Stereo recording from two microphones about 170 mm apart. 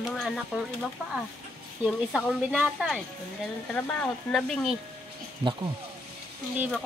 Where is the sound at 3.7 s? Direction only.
10° left (ahead or behind).